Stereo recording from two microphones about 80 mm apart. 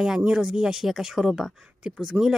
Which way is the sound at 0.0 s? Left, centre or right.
Centre.